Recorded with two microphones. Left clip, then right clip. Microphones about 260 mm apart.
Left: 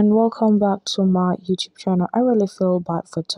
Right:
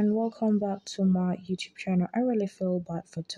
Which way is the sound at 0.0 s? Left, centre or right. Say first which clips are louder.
Left 11 dB; left.